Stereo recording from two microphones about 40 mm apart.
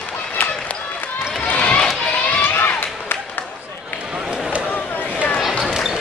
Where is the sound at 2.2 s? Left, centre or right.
Left.